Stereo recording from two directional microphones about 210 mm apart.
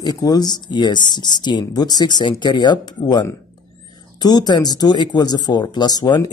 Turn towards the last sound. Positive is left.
turn(degrees=20)  # may be behind; listen again after turning